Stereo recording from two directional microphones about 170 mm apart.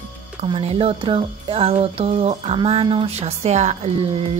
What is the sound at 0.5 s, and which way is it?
Speech, 35° right (ahead or behind).